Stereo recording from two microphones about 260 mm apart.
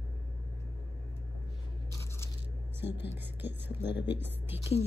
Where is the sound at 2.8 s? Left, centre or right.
Left.